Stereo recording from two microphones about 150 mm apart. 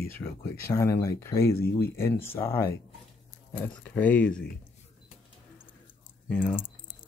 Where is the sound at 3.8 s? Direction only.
10° left (ahead or behind).